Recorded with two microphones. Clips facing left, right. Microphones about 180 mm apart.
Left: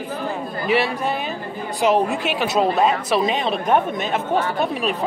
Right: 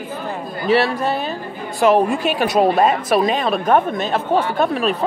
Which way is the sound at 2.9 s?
50° right (ahead or behind).